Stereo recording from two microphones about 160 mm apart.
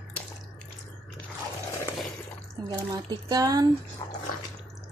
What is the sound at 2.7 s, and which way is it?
Speech, 25° right (ahead or behind).